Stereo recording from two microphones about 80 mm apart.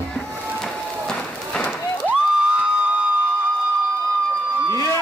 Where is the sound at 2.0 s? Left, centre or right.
Centre.